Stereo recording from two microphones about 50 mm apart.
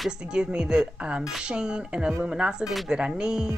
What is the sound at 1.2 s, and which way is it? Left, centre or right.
Speech, centre.